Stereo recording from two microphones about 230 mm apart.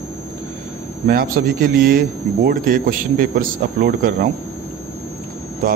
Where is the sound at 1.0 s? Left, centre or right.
Right.